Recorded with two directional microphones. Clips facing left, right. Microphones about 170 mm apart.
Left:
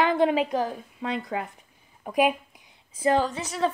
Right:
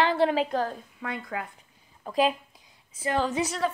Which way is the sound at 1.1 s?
25° left (ahead or behind).